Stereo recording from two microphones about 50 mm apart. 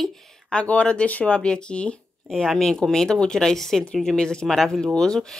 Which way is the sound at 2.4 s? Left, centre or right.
Centre.